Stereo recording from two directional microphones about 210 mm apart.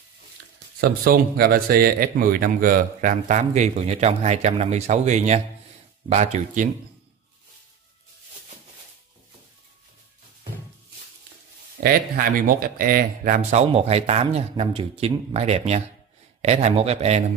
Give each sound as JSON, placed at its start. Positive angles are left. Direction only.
{"t": 0.7, "sound": "speech", "side_deg": -45}
{"t": 11.8, "sound": "speech", "side_deg": -40}